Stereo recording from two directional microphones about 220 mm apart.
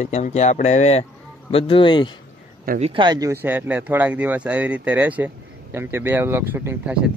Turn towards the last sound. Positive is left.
turn(degrees=-5)  # may be behind; listen again after turning